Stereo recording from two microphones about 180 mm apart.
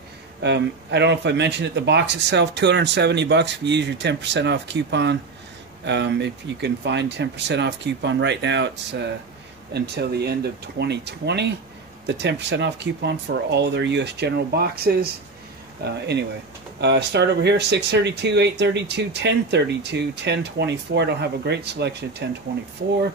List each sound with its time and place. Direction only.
0.4 s speech: 70° right (ahead or behind)